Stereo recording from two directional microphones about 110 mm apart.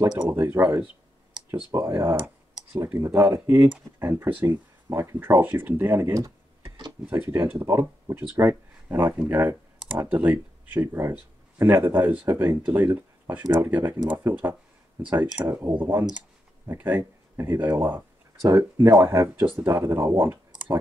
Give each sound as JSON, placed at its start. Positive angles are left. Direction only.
{"t": 0.3, "sound": "speech", "side_deg": -20}